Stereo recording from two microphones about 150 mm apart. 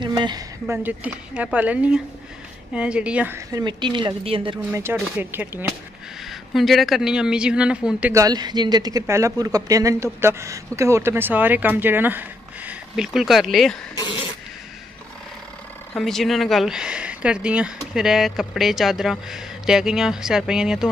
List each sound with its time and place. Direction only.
0.0 s a sound: 30° right (ahead or behind)
0.7 s speech: 10° right (ahead or behind)
3.3 s a woman's voice: 25° right (ahead or behind)
4.7 s speech: 20° right (ahead or behind)
6.2 s speech: centre (ahead or behind)
8.1 s speech: 25° right (ahead or behind); by 13.7 s centre (ahead or behind)
15.9 s speech: centre (ahead or behind)